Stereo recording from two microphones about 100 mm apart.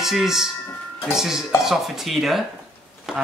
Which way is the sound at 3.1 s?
5° right (ahead or behind).